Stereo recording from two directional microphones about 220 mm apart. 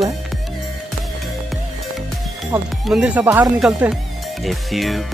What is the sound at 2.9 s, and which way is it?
Speech, 5° right (ahead or behind).